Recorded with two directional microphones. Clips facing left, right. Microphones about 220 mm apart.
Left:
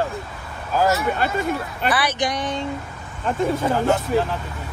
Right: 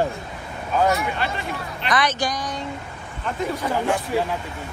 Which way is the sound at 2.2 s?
25° left (ahead or behind).